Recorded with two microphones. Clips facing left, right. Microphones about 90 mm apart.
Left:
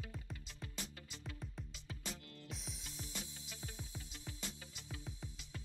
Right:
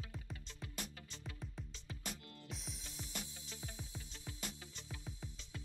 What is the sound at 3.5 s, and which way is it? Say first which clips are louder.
Music: even; 10° left (ahead or behind).